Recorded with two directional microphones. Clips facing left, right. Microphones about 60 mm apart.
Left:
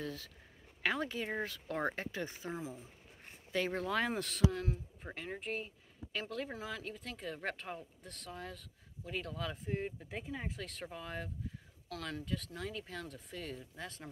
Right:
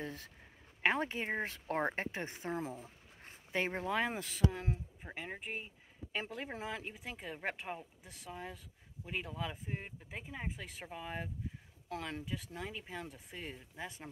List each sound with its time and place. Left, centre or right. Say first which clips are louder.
0.0 s speech: left 1 dB; right
2.6 s speech: right 2 dB; right
3.5 s speech: even; right